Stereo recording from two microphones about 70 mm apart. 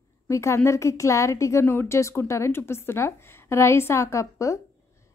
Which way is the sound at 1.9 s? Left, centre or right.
Left.